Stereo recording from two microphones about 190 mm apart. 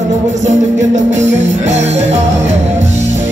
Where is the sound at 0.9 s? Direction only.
35° right (ahead or behind).